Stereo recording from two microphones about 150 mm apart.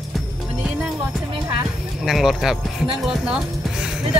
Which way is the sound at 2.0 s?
Centre (ahead or behind).